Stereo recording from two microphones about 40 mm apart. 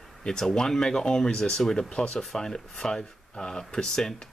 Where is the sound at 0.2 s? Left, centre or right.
Centre.